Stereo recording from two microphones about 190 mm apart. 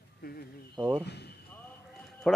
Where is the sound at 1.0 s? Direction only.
60° left (ahead or behind).